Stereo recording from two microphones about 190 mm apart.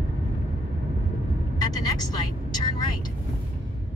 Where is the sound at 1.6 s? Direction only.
20° left (ahead or behind).